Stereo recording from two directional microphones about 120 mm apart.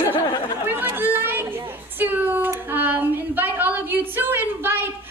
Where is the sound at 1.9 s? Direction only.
15° right (ahead or behind).